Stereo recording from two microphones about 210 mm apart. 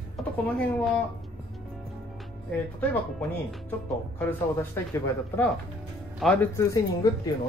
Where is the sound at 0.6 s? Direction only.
5° left (ahead or behind).